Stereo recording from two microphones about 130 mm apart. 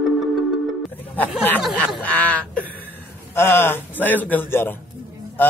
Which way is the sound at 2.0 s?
10° left (ahead or behind).